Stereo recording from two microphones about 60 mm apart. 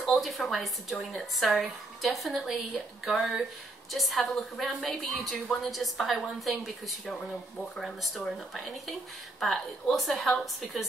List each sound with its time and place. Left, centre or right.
0.0 s a woman's voice: centre